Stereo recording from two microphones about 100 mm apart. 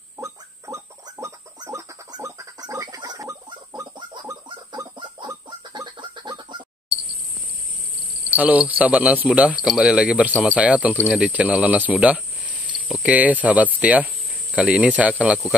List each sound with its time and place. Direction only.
0.2 s pig: 30° right (ahead or behind)
2.0 s a sound: 35° right (ahead or behind)
3.9 s pig: 50° right (ahead or behind)
4.9 s chicken: 50° right (ahead or behind)
8.4 s speech: 15° right (ahead or behind)